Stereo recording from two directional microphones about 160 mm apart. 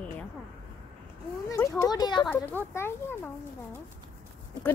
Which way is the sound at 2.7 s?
15° left (ahead or behind).